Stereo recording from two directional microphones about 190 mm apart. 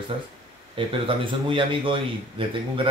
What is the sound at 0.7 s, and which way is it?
A man's voice, 25° right (ahead or behind).